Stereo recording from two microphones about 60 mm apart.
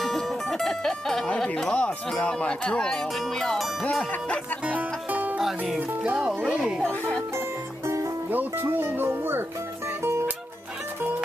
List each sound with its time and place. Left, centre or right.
0.0 s music: centre
1.5 s speech: centre
4.6 s music: right
6.1 s speech: centre
6.8 s speech: centre
7.3 s music: right
8.3 s speech: right